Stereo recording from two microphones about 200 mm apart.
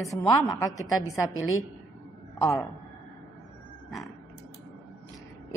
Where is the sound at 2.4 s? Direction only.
15° left (ahead or behind).